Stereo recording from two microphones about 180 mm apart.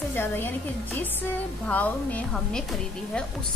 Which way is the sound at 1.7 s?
10° left (ahead or behind).